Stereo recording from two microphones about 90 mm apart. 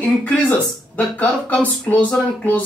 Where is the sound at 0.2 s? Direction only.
15° left (ahead or behind).